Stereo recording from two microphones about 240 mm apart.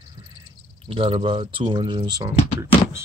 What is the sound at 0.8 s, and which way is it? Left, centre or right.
Speech, right.